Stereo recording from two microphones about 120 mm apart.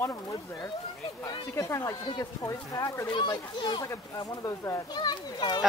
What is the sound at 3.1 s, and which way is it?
Speech, 40° left (ahead or behind).